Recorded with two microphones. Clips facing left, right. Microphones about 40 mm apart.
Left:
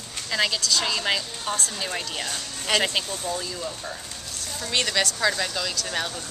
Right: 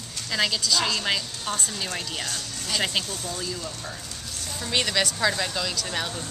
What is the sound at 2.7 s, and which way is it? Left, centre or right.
Speech, left.